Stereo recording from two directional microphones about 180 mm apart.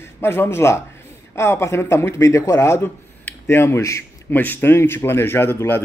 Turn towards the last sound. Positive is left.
turn(degrees=10)  # may be behind; listen again after turning